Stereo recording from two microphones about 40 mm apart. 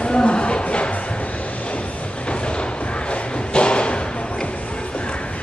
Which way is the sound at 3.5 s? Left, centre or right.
Left.